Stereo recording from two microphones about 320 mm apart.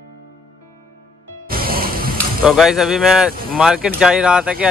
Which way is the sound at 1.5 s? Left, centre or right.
Right.